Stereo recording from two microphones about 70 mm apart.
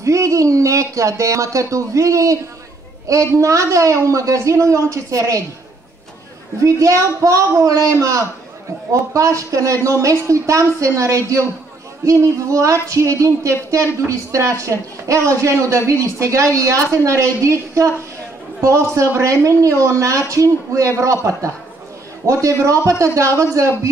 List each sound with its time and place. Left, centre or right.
0.0 s speech: right
3.3 s speech: right
6.6 s speech: right